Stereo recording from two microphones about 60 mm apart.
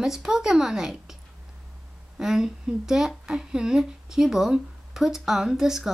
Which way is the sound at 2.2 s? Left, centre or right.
Centre.